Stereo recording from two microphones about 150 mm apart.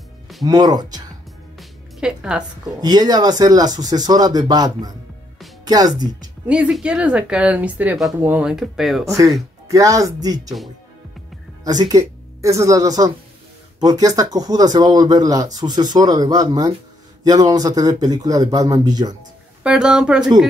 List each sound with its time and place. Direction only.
0.5 s speech: 25° right (ahead or behind)
1.6 s music: 5° right (ahead or behind)
2.6 s speech: 25° right (ahead or behind)
6.4 s speech: 10° right (ahead or behind)
9.0 s speech: 20° right (ahead or behind)
11.6 s speech: 25° right (ahead or behind)
19.6 s speech: 5° right (ahead or behind)